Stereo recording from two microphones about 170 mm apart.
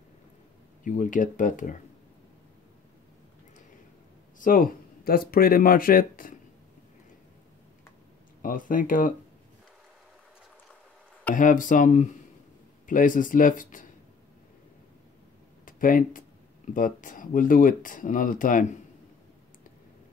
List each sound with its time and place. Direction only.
0.8 s speech: 50° left (ahead or behind)
4.4 s speech: 55° left (ahead or behind)
8.4 s speech: 55° left (ahead or behind)
11.3 s speech: 50° left (ahead or behind)
15.6 s speech: 55° left (ahead or behind)